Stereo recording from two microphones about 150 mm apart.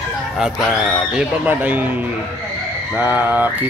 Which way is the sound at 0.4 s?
5° right (ahead or behind).